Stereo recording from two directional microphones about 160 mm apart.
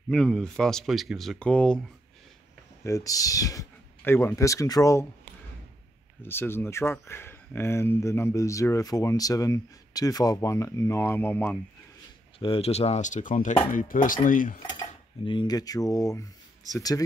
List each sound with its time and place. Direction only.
0.1 s speech: 5° left (ahead or behind)
2.8 s speech: 20° left (ahead or behind)
6.2 s speech: 15° left (ahead or behind)
12.4 s speech: 35° left (ahead or behind); by 14.6 s 55° left (ahead or behind)
15.2 s speech: 30° left (ahead or behind)